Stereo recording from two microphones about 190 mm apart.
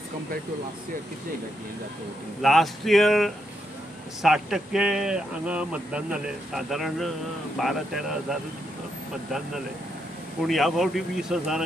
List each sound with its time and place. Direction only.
2.4 s a man's voice: centre (ahead or behind)
10.4 s a man's voice: centre (ahead or behind)